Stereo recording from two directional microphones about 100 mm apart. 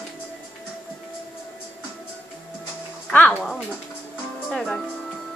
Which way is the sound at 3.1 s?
15° left (ahead or behind).